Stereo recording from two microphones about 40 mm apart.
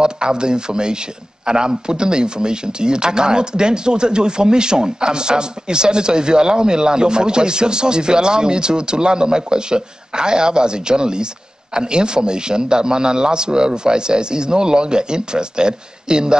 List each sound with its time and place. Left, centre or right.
0.0 s a man's voice: right